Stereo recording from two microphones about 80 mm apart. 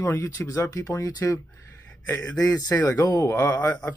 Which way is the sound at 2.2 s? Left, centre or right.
Left.